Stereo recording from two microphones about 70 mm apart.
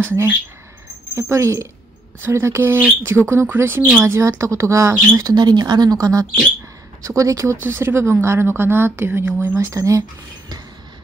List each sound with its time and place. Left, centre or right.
0.0 s speech: right
1.1 s speech: right
4.0 s speech: right
5.3 s speech: right
7.6 s speech: right